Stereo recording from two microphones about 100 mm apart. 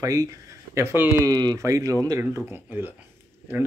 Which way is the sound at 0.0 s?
35° right (ahead or behind).